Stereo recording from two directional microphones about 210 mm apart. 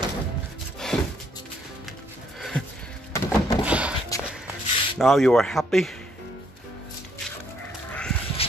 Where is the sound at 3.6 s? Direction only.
5° right (ahead or behind).